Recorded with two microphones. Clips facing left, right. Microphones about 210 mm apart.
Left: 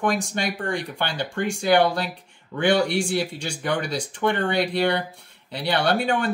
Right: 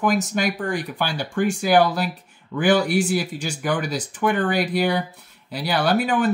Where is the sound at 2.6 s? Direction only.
25° left (ahead or behind).